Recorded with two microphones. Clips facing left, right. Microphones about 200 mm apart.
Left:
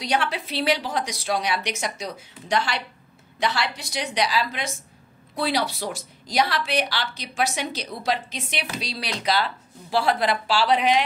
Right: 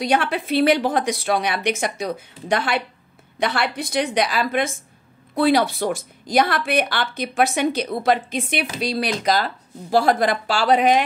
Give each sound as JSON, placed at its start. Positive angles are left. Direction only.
{"t": 0.0, "sound": "a woman's voice", "side_deg": -55}